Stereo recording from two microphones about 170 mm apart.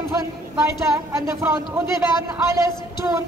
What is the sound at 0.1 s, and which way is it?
Speech, 15° right (ahead or behind).